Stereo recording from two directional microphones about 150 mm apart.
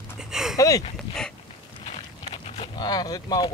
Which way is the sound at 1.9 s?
45° left (ahead or behind).